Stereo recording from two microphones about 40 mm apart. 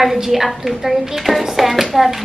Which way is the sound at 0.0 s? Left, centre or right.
Centre.